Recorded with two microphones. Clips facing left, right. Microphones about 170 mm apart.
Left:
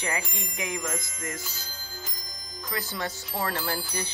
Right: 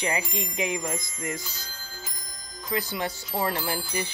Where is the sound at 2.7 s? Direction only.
15° right (ahead or behind).